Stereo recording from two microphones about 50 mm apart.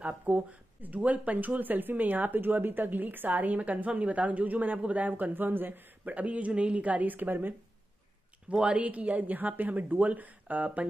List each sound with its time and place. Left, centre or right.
0.0 s speech: right
8.5 s speech: right